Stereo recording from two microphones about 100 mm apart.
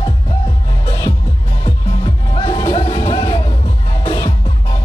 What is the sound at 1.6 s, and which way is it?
Music, 50° left (ahead or behind).